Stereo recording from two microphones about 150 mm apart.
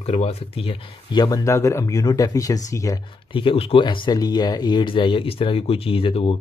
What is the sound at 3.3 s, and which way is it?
Speech, 40° left (ahead or behind).